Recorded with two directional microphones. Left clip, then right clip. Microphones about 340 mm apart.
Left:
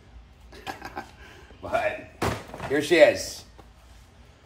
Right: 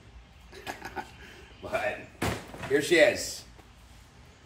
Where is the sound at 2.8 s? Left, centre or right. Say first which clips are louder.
Left 4 dB; centre.